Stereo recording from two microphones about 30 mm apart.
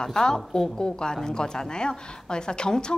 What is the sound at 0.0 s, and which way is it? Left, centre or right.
A woman's voice, centre.